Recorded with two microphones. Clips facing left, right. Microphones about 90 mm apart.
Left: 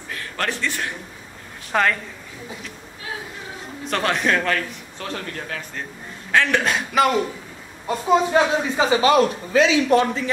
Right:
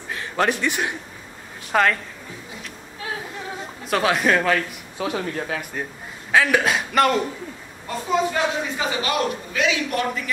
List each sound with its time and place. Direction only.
0.1 s a man's voice: 20° right (ahead or behind)
1.7 s a woman's voice: centre (ahead or behind)
3.8 s a man's voice: 5° right (ahead or behind)
8.3 s a man's voice: 30° left (ahead or behind)